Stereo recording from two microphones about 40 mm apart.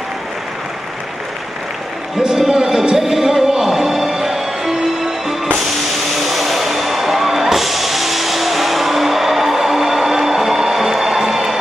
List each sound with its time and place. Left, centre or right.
2.1 s music: centre
6.1 s music: centre